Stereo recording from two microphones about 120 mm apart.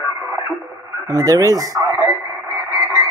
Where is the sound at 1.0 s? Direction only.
30° right (ahead or behind).